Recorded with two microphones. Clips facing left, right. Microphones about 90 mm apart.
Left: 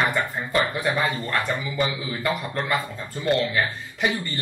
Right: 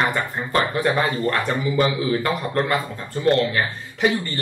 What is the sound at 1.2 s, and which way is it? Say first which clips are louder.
A man's voice: right 4 dB; 45° right (ahead or behind).